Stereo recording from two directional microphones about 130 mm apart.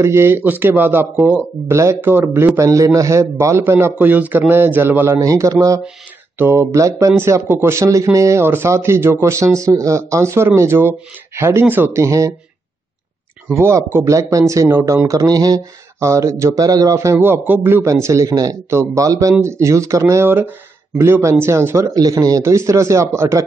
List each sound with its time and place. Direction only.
0.0 s speech: 20° right (ahead or behind)
5.1 s speech: 25° right (ahead or behind)
13.6 s speech: 20° right (ahead or behind)